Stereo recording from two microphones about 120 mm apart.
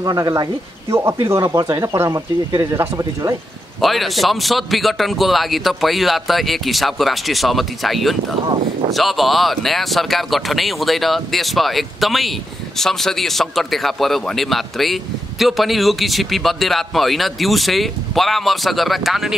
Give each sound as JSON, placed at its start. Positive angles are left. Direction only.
{"t": 0.0, "sound": "speech", "side_deg": -30}
{"t": 3.8, "sound": "speech", "side_deg": 0}